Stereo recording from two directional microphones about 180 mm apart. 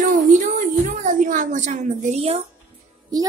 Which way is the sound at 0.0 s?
45° right (ahead or behind).